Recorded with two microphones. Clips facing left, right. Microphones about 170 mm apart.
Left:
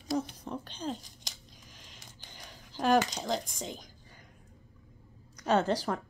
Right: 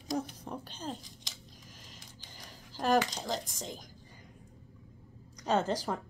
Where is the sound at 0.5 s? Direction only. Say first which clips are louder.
Left 3 dB; 5° right (ahead or behind).